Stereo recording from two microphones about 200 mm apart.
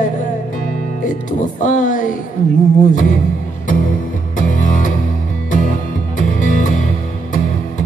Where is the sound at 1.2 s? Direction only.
40° left (ahead or behind).